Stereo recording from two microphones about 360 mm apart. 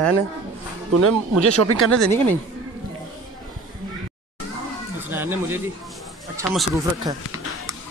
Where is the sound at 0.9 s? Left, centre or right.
Right.